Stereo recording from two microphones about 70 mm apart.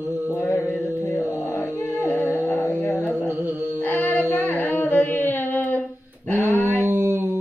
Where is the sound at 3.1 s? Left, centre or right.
Right.